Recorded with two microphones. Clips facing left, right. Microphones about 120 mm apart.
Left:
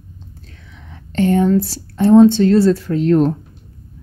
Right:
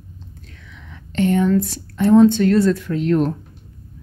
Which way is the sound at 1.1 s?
35° left (ahead or behind).